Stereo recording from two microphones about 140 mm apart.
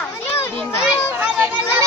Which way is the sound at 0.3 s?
20° left (ahead or behind).